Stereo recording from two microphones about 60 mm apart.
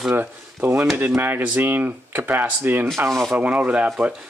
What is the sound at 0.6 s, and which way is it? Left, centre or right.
Speech, right.